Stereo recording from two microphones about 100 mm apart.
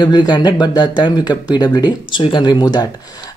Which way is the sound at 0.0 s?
45° left (ahead or behind).